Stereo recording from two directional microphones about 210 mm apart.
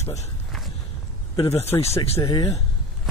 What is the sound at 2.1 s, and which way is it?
Speech, 25° left (ahead or behind).